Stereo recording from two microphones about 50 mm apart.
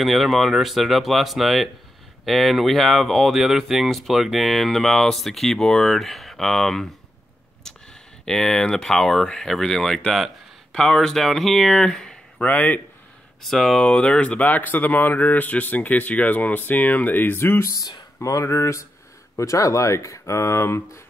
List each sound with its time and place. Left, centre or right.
0.0 s speech: centre
7.7 s a sound: centre
8.3 s speech: centre
12.4 s speech: left
13.4 s speech: centre
13.8 s speech: left
14.4 s speech: left
18.3 s speech: left